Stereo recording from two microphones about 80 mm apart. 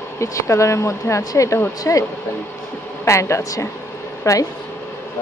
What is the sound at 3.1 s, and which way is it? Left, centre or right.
Speech, left.